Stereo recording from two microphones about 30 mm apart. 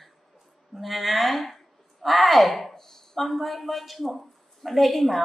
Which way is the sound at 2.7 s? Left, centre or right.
Centre.